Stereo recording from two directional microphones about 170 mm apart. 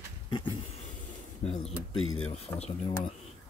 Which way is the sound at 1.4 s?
35° left (ahead or behind).